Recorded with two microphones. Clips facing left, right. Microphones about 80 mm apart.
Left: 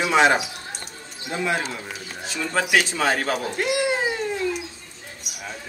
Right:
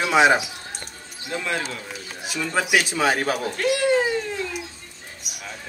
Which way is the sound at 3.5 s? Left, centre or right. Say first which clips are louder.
Right 2 dB; centre.